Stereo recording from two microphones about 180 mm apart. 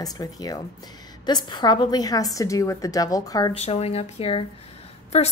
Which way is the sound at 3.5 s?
35° left (ahead or behind).